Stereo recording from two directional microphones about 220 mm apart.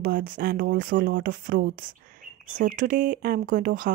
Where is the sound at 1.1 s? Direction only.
50° right (ahead or behind).